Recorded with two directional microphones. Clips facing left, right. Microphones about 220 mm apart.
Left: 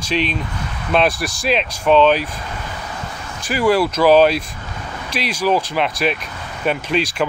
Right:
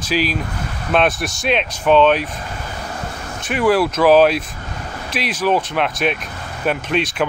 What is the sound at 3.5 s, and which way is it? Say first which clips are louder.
Speech: even; centre (ahead or behind).